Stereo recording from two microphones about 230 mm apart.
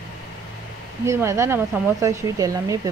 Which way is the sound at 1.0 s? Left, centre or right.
Centre.